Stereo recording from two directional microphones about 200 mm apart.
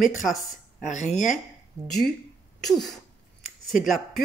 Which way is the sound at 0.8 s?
40° left (ahead or behind).